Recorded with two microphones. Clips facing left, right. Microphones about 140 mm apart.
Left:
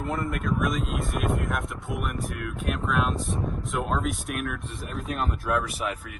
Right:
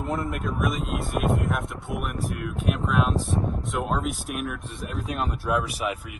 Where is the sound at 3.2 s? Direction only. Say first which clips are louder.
Right 4 dB; 35° right (ahead or behind).